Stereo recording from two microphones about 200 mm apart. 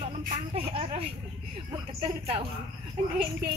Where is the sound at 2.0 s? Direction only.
30° right (ahead or behind).